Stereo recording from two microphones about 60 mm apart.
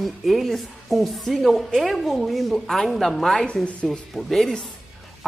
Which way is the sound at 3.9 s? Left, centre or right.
Centre.